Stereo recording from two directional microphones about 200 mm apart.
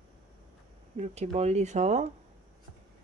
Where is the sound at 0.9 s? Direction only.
35° right (ahead or behind).